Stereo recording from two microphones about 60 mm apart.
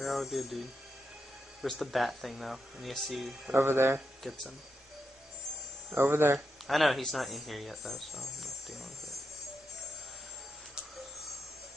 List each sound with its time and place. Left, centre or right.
0.0 s speech: centre
1.6 s speech: centre
3.5 s speech: right
4.2 s speech: centre
5.9 s speech: right
6.7 s speech: centre